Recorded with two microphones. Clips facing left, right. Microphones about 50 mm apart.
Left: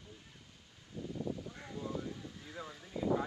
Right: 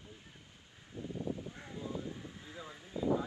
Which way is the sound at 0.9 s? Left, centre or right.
Right.